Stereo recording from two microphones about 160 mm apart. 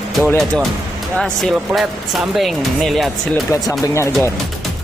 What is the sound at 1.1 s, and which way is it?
Speech, centre (ahead or behind).